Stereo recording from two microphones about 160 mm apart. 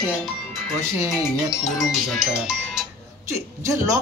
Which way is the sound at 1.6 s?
Centre (ahead or behind).